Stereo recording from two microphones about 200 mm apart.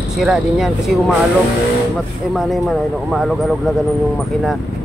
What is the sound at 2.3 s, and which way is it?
Speech, centre (ahead or behind).